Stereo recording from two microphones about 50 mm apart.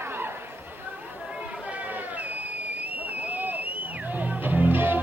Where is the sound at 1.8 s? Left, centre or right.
Right.